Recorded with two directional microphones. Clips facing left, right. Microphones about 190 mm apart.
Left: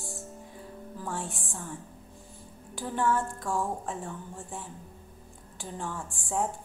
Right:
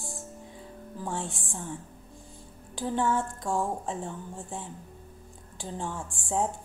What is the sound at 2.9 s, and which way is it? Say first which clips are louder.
A woman's voice: even; 15° right (ahead or behind).